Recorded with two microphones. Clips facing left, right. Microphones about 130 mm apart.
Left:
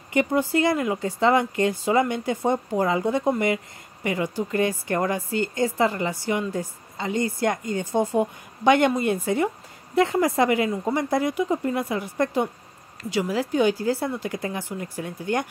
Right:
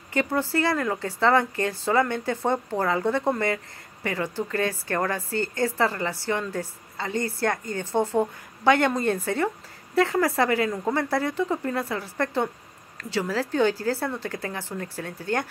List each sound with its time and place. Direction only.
0.1 s a woman's voice: 20° left (ahead or behind)